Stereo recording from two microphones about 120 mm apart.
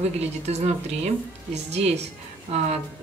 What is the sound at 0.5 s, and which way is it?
Speech, 65° right (ahead or behind).